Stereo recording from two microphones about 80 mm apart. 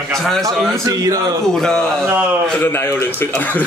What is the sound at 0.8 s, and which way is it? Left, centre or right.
Speech, right.